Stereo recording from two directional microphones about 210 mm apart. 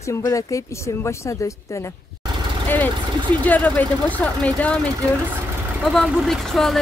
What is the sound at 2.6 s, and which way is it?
Vehicle, 10° left (ahead or behind).